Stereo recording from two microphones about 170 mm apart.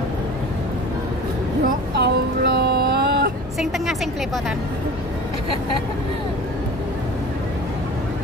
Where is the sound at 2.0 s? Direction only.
85° right; by 3.3 s 70° right (ahead or behind).